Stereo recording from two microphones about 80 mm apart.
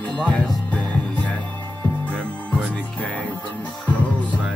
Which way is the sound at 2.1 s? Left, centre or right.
Centre.